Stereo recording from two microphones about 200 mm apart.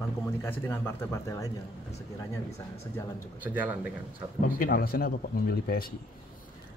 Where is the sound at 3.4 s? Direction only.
10° right (ahead or behind).